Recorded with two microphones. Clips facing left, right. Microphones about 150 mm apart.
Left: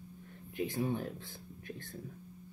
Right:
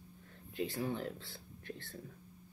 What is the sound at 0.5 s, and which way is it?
Speech, 15° left (ahead or behind).